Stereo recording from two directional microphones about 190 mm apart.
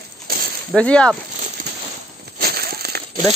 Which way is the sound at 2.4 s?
55° right (ahead or behind).